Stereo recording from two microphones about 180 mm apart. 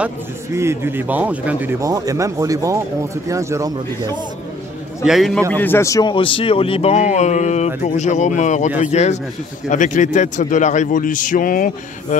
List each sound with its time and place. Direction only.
0.6 s speech: 15° right (ahead or behind)
5.0 s a man's voice: centre (ahead or behind)
5.5 s a man's voice: 10° left (ahead or behind); by 12.2 s 50° left (ahead or behind)